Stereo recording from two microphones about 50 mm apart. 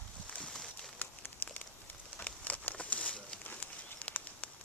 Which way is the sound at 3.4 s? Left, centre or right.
Left.